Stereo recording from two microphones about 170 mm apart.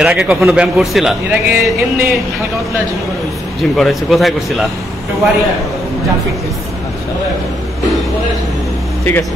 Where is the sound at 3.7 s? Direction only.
Centre (ahead or behind).